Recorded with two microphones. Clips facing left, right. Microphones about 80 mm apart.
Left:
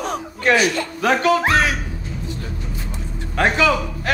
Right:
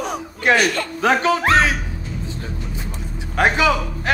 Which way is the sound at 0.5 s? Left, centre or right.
Right.